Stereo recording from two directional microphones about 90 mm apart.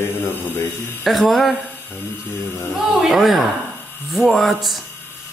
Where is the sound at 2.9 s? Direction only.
Centre (ahead or behind).